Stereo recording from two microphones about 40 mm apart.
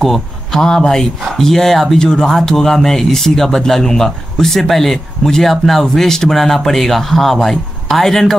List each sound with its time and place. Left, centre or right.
0.0 s speech: centre